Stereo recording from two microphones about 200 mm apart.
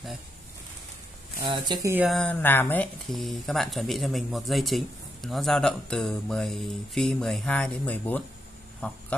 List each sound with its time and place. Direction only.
1.4 s speech: 20° right (ahead or behind)
2.0 s speech: 5° left (ahead or behind)